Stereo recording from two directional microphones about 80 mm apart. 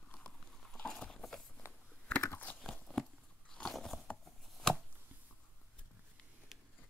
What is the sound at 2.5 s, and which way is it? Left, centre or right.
Crunch, left.